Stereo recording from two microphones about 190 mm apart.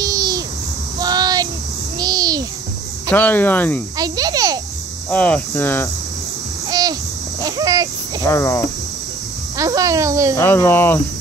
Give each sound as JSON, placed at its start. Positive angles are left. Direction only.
{"t": 0.0, "sound": "a sound", "side_deg": -20}
{"t": 0.9, "sound": "child singing", "side_deg": -20}
{"t": 2.0, "sound": "babbling", "side_deg": -20}
{"t": 3.1, "sound": "speech", "side_deg": 10}
{"t": 4.0, "sound": "insect", "side_deg": -20}
{"t": 5.1, "sound": "speech", "side_deg": 5}
{"t": 6.7, "sound": "a sound", "side_deg": -20}
{"t": 8.3, "sound": "speech", "side_deg": 15}
{"t": 9.6, "sound": "speech", "side_deg": -15}
{"t": 10.3, "sound": "speech", "side_deg": 10}